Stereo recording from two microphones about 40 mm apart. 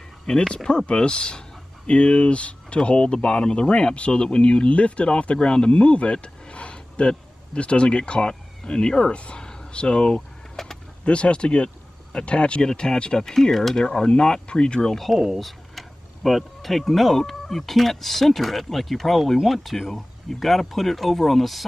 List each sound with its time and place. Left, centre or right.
0.3 s speech: centre
9.1 s speech: left
9.4 s a sound: centre
11.1 s speech: left
12.6 s speech: centre
13.8 s speech: centre
15.0 s speech: centre